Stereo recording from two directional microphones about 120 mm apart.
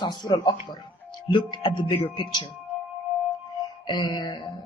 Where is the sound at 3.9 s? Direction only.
40° left (ahead or behind).